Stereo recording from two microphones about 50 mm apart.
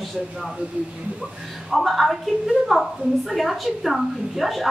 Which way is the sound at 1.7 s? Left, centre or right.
Centre.